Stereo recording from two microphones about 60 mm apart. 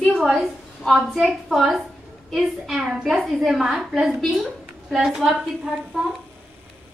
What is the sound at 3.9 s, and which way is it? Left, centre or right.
Speech, right.